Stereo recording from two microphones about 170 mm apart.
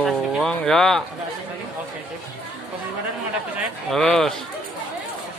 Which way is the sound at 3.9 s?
Centre (ahead or behind).